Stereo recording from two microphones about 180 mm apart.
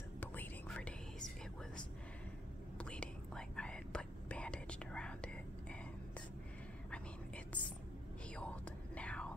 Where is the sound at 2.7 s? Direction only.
5° left (ahead or behind).